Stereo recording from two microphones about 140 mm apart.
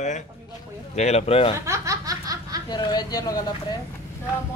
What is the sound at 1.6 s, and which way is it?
Laughter, 20° right (ahead or behind).